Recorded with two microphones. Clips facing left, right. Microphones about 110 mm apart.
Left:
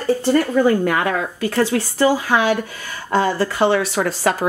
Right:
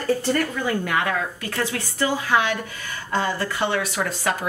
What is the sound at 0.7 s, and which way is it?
Speech, 40° left (ahead or behind).